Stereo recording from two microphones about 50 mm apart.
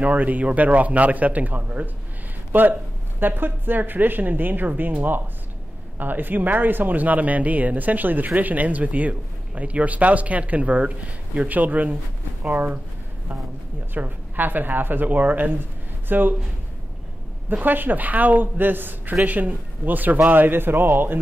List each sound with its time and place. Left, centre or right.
0.0 s speech: right
13.9 s speech: right
17.5 s a man's voice: right